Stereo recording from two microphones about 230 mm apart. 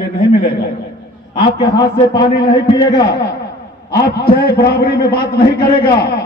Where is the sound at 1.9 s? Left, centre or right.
Centre.